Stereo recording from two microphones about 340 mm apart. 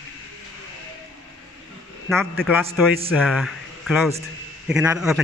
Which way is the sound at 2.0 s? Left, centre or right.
Centre.